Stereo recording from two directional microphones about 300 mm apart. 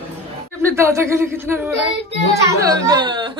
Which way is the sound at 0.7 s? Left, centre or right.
Centre.